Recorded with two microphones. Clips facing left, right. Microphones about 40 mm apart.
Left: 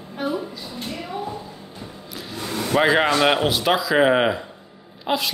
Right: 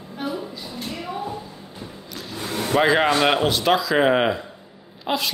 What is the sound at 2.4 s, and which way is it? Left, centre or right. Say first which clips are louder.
Vehicle: even; right.